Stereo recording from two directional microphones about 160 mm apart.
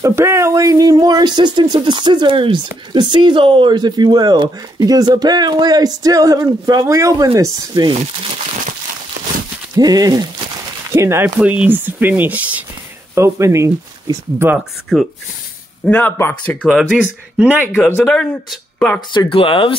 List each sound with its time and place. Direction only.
0.0 s speech: 15° right (ahead or behind)
9.8 s speech: 25° right (ahead or behind)
14.6 s speech: centre (ahead or behind); by 16.5 s 15° left (ahead or behind)
16.6 s speech: 5° right (ahead or behind)
17.8 s speech: 10° left (ahead or behind)
18.9 s speech: 30° left (ahead or behind)